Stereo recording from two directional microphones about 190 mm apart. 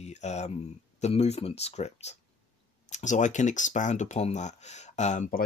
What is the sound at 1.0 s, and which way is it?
Speech, 35° left (ahead or behind).